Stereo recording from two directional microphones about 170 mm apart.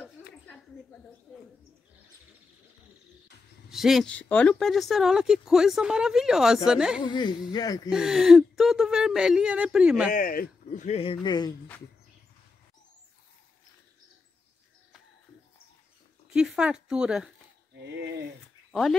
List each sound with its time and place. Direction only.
3.7 s speech: centre (ahead or behind)
7.0 s speech: 25° left (ahead or behind)
7.9 s speech: 5° right (ahead or behind)
10.1 s speech: 55° left (ahead or behind)
10.9 s speech: 30° left (ahead or behind)
16.3 s speech: 5° right (ahead or behind)
18.7 s speech: centre (ahead or behind)